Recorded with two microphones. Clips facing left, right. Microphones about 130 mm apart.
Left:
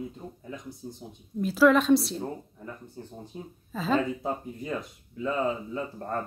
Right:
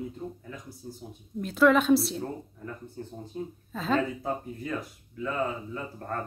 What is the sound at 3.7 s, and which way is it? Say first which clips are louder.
Speech: left 1 dB; centre (ahead or behind).